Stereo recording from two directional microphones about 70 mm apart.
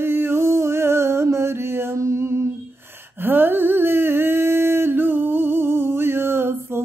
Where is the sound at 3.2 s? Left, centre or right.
Right.